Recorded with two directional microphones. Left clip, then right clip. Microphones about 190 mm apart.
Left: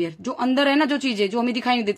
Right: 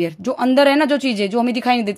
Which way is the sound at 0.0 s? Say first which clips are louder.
Right 5 dB; 35° right (ahead or behind).